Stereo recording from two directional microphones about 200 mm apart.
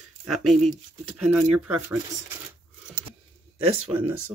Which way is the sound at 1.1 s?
5° right (ahead or behind).